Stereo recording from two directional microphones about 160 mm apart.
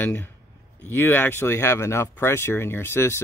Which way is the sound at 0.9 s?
15° left (ahead or behind).